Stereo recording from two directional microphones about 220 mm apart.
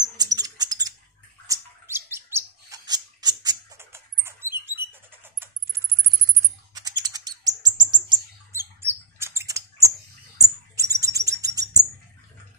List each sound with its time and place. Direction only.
0.2 s rodents: 15° right (ahead or behind)
1.5 s bird: 10° right (ahead or behind)
5.2 s typing: 10° right (ahead or behind)
6.7 s bird: 15° right (ahead or behind)